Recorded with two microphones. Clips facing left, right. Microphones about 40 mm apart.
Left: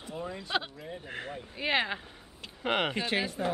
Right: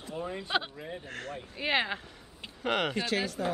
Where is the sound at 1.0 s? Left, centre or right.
Centre.